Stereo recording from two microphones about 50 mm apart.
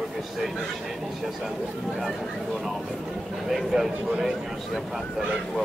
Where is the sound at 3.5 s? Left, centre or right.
Centre.